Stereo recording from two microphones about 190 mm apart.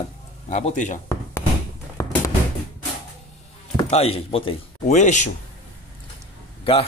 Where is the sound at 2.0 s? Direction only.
15° left (ahead or behind).